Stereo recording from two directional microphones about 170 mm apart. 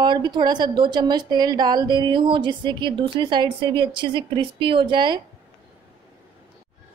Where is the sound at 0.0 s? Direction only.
25° right (ahead or behind).